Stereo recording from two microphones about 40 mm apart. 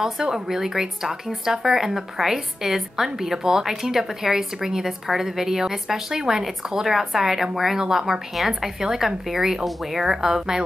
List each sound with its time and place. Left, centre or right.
0.0 s speech: centre
8.4 s a woman's voice: centre